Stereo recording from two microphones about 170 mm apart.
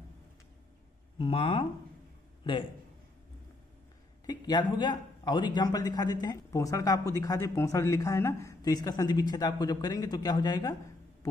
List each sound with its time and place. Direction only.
1.1 s a man's voice: 30° left (ahead or behind)
4.3 s a man's voice: 25° left (ahead or behind)